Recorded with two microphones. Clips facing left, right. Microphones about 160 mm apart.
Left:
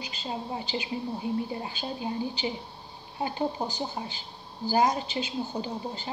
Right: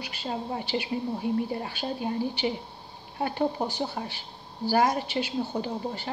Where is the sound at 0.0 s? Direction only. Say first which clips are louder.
Right 2 dB; 55° right (ahead or behind).